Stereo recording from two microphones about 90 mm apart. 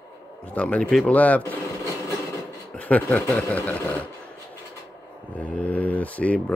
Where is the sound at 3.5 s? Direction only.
15° left (ahead or behind).